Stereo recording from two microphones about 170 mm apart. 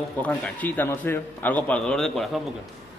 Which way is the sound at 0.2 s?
10° left (ahead or behind).